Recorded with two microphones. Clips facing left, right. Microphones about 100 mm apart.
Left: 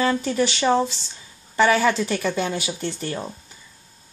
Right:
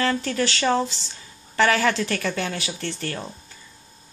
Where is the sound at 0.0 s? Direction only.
15° left (ahead or behind).